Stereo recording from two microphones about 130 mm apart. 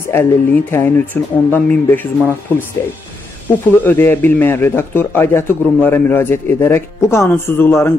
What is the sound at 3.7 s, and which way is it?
A man's voice, 15° left (ahead or behind).